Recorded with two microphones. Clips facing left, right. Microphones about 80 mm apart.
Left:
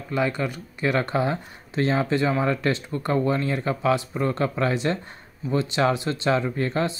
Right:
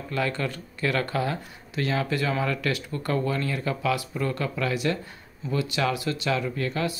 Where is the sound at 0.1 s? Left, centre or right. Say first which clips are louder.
Left 3 dB; centre.